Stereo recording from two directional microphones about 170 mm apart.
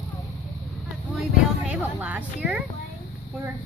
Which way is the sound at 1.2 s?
5° right (ahead or behind).